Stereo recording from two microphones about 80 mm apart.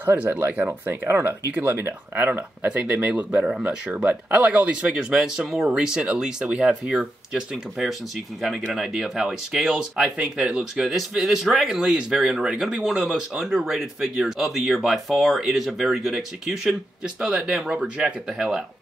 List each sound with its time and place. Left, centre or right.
0.0 s speech: right